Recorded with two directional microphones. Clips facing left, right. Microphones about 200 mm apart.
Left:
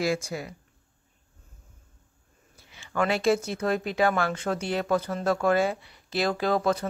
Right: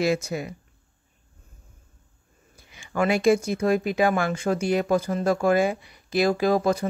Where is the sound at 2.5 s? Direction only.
15° right (ahead or behind).